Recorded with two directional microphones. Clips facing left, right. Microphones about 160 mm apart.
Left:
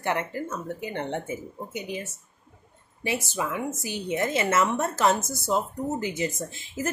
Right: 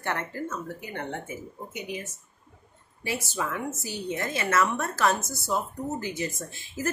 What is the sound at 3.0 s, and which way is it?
A woman's voice, 15° left (ahead or behind).